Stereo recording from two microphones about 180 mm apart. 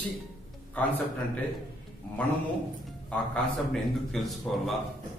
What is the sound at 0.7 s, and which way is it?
Speech, 10° left (ahead or behind).